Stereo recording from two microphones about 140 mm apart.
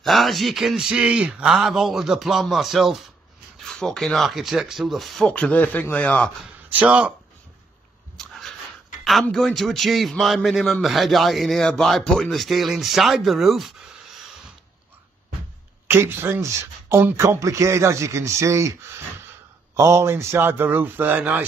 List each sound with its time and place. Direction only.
0.0 s a man's voice: centre (ahead or behind)
6.7 s a man's voice: 10° right (ahead or behind)
8.2 s dog: 5° left (ahead or behind)
9.0 s a man's voice: centre (ahead or behind)
15.9 s a man's voice: 15° right (ahead or behind)